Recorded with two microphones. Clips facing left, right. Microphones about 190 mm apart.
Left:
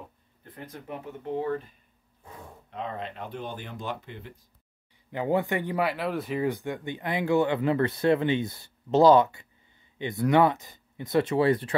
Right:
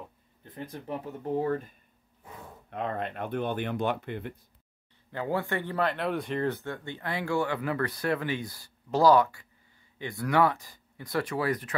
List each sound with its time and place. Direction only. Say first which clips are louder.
0.7 s speech: right 2 dB; 35° right (ahead or behind)
2.7 s speech: right 3 dB; 55° right (ahead or behind)
5.1 s speech: left 4 dB; 20° left (ahead or behind)